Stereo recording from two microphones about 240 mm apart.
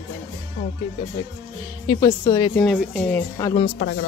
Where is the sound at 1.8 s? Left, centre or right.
Centre.